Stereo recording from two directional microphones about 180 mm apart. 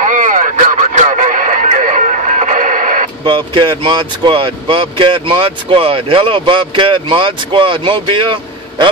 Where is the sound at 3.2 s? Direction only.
25° right (ahead or behind).